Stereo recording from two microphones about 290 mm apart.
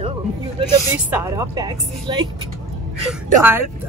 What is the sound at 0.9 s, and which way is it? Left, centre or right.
Speech, centre.